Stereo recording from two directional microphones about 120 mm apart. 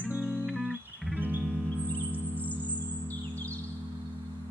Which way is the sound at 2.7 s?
15° left (ahead or behind).